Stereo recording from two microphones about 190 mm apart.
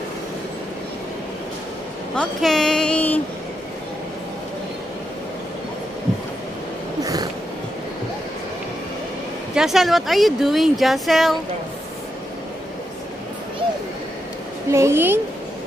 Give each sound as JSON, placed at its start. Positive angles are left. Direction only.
{"t": 2.1, "sound": "speech", "side_deg": 5}
{"t": 7.0, "sound": "a sound", "side_deg": -20}
{"t": 9.6, "sound": "speech", "side_deg": 0}
{"t": 14.7, "sound": "a woman's voice", "side_deg": -15}